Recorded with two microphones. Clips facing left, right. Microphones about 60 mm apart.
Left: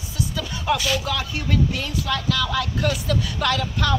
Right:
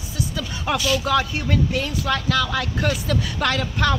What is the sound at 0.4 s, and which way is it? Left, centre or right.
Speech, right.